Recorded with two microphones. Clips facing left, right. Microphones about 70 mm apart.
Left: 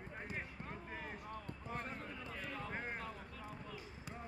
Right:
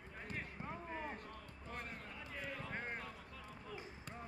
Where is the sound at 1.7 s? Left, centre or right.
Left.